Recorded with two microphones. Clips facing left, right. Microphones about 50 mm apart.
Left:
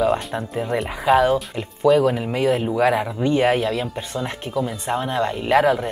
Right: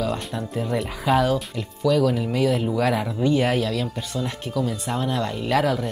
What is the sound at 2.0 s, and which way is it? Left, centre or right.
Speech, left.